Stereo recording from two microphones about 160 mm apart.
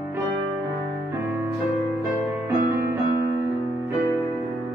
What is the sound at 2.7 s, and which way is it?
Music, 70° right (ahead or behind).